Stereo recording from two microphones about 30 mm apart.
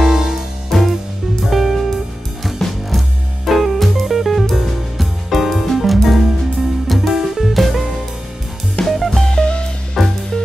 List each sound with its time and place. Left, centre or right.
0.0 s music: centre
0.7 s music: centre
1.4 s music: centre
8.8 s music: centre
9.2 s music: left
10.0 s music: centre